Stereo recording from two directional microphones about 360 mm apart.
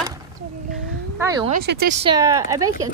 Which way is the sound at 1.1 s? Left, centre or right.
Centre.